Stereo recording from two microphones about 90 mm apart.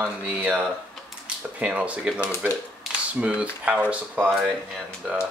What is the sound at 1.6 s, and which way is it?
Speech, 15° right (ahead or behind).